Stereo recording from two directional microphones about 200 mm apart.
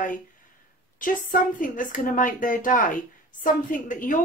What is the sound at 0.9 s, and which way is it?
A woman's voice, 40° left (ahead or behind).